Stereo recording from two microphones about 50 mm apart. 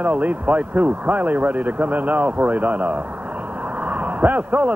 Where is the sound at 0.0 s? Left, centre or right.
Right.